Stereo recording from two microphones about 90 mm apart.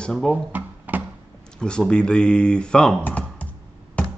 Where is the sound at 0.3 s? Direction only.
20° right (ahead or behind).